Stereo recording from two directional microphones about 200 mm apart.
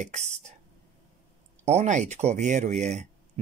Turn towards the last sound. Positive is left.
turn(degrees=-35)  # may be behind; listen again after turning